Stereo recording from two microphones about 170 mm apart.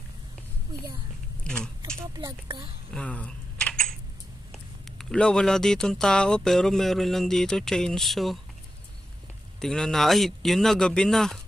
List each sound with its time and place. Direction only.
1.4 s speech: 5° left (ahead or behind)
2.0 s speech: 20° right (ahead or behind)
2.9 s a sound: 5° left (ahead or behind)
4.8 s speech: 5° left (ahead or behind)
9.6 s speech: 5° left (ahead or behind)